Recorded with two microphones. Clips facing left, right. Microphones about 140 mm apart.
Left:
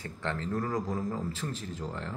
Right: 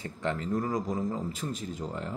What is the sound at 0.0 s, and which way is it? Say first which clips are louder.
Speech: right 3 dB; 20° right (ahead or behind).